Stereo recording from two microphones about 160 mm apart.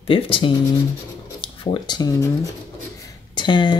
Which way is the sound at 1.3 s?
30° left (ahead or behind).